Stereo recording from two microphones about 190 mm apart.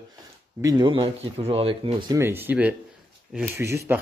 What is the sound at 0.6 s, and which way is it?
Speech, 20° right (ahead or behind).